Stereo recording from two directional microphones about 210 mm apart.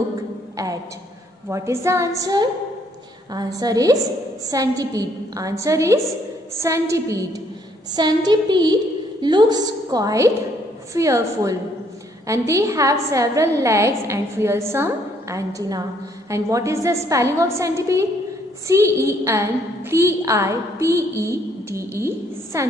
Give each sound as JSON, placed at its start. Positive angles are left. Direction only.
{"t": 1.5, "sound": "a woman's voice", "side_deg": -15}